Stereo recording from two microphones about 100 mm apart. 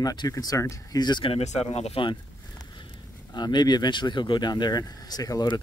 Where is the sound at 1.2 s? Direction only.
80° left.